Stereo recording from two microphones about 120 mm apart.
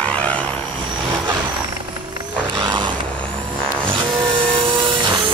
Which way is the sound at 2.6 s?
40° right (ahead or behind).